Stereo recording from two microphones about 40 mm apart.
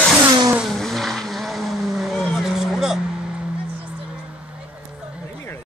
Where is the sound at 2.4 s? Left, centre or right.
Centre.